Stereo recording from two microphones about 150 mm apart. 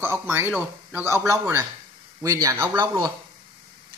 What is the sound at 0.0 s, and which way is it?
Speech, 15° right (ahead or behind).